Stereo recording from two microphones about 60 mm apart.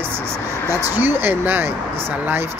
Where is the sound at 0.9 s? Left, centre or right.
Right.